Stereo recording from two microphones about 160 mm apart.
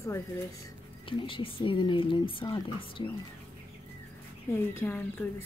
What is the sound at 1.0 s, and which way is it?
Speech, 30° left (ahead or behind).